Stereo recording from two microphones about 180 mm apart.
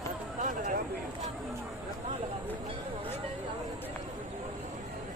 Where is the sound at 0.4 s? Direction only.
45° right (ahead or behind).